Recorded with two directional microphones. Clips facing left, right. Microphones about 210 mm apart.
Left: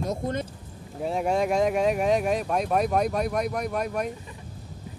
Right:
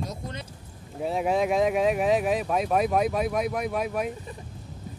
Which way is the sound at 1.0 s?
Centre (ahead or behind).